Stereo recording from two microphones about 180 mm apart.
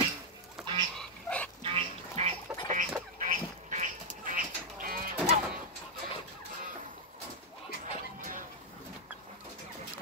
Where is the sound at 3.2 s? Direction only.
45° right (ahead or behind).